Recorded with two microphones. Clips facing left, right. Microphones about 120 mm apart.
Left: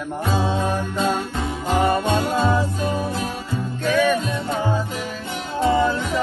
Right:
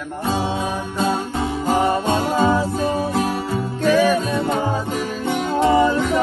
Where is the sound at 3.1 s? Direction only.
55° right (ahead or behind).